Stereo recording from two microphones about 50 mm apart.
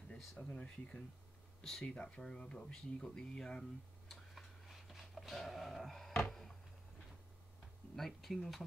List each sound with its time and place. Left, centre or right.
0.4 s speech: left
4.1 s a sound: centre
7.9 s speech: centre